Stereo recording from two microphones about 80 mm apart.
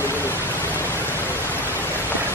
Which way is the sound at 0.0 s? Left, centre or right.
Left.